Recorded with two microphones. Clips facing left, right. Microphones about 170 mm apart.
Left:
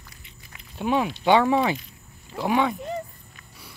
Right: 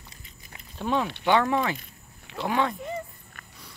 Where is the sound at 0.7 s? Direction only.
15° left (ahead or behind).